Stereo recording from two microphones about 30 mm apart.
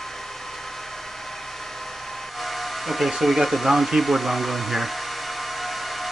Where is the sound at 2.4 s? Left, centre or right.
Centre.